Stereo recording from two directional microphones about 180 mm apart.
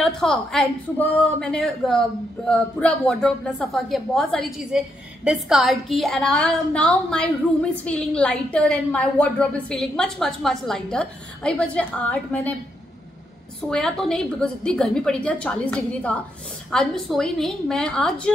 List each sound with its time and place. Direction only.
0.0 s a woman's voice: 5° left (ahead or behind)
13.7 s a woman's voice: 5° left (ahead or behind)